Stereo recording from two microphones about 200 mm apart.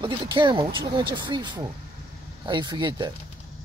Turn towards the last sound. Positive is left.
turn(degrees=-20)  # may be behind; listen again after turning